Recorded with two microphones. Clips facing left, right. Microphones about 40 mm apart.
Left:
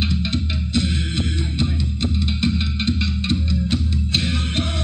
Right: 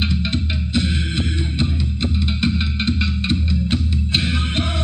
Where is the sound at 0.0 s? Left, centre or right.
Centre.